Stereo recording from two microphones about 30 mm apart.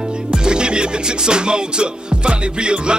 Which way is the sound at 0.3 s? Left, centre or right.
Right.